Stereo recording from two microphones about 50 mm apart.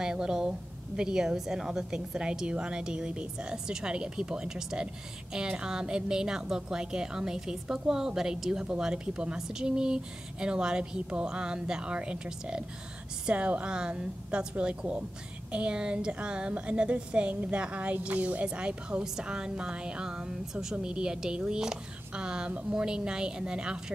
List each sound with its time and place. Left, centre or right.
0.0 s a woman's voice: centre